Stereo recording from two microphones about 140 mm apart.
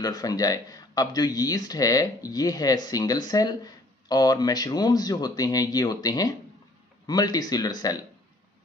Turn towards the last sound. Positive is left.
turn(degrees=30)  # may be behind; listen again after turning